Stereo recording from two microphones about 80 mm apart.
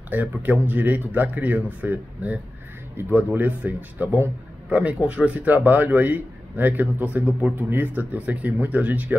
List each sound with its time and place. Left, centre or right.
0.1 s a man's voice: right